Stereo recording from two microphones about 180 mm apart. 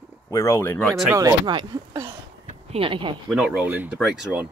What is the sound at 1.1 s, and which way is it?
Speech, 20° right (ahead or behind).